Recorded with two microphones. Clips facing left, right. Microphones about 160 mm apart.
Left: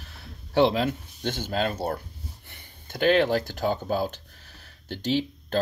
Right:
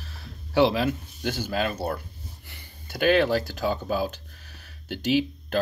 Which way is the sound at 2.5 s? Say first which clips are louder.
Even; 10° right (ahead or behind).